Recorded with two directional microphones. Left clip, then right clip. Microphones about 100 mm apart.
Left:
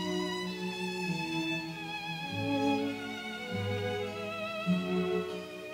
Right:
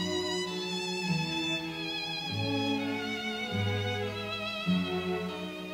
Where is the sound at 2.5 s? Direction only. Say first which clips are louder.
Left 2 dB; 40° left (ahead or behind).